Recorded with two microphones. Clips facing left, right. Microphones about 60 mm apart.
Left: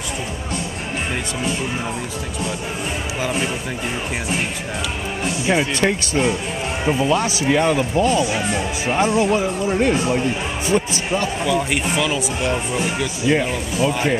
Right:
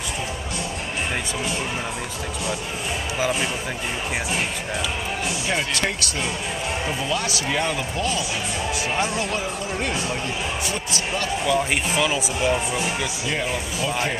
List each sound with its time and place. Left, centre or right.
3.2 s speech: centre
6.9 s speech: left
10.7 s speech: left
11.4 s speech: centre
13.3 s speech: centre